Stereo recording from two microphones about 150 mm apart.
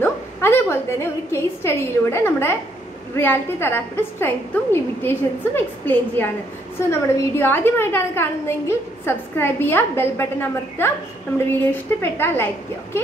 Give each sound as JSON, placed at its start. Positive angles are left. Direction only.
{"t": 0.0, "sound": "a woman's voice", "side_deg": 15}